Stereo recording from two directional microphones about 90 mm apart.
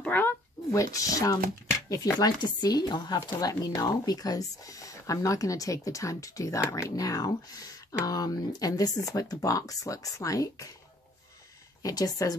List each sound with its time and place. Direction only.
0.0 s a sound: 20° left (ahead or behind)
0.7 s speech: 35° left (ahead or behind)
2.1 s speech: 50° left (ahead or behind)
11.8 s speech: 45° left (ahead or behind)